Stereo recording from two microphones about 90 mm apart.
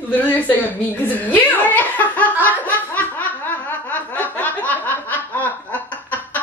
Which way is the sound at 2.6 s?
20° left (ahead or behind).